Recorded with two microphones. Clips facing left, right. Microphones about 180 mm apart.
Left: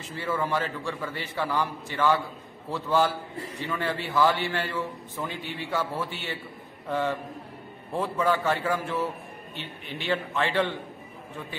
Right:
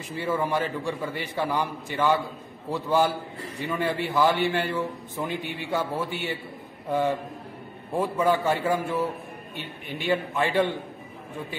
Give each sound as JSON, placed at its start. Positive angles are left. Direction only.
{"t": 0.1, "sound": "a man's voice", "side_deg": -15}
{"t": 9.6, "sound": "speech", "side_deg": -50}
{"t": 10.0, "sound": "a man's voice", "side_deg": -10}